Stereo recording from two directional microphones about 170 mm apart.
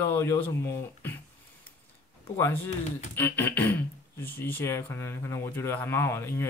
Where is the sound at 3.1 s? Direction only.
10° left (ahead or behind).